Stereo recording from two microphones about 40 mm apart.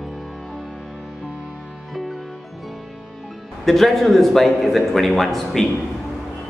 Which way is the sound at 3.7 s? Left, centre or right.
Centre.